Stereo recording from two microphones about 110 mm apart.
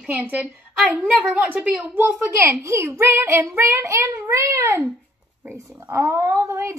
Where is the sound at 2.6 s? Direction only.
25° right (ahead or behind).